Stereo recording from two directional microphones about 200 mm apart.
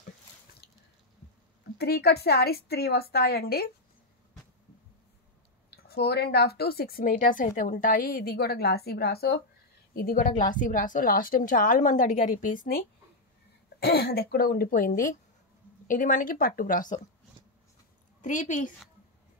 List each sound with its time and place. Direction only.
1.8 s a woman's voice: 50° left (ahead or behind)
5.7 s a woman's voice: 55° left (ahead or behind)
18.2 s a woman's voice: 40° left (ahead or behind)